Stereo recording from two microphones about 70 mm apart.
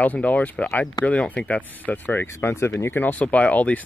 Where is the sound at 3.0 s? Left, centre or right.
Left.